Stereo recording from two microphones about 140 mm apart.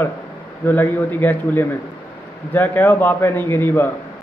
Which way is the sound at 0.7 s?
15° left (ahead or behind).